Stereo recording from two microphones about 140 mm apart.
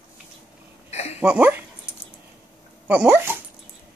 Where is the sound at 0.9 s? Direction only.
50° left (ahead or behind).